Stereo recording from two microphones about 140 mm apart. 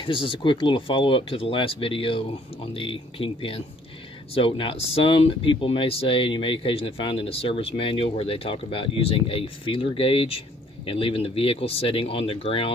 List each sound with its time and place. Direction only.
0.0 s speech: 40° left (ahead or behind)